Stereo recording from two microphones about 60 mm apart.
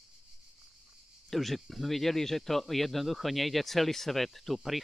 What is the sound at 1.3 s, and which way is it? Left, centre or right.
Speech, centre.